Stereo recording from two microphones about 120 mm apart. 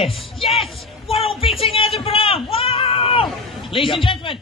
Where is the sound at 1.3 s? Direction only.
50° left (ahead or behind).